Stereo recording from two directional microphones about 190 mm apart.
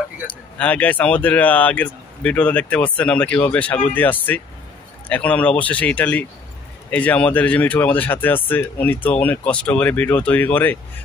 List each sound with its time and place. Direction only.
0.6 s speech: 10° left (ahead or behind)